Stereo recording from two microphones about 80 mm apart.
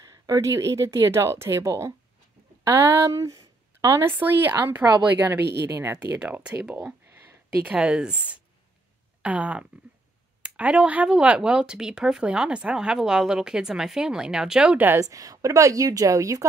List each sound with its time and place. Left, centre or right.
0.0 s speech: right
2.6 s speech: right
3.1 s a sound: right
4.1 s speech: right
6.3 s a sound: centre
7.6 s speech: centre
15.0 s a woman's voice: right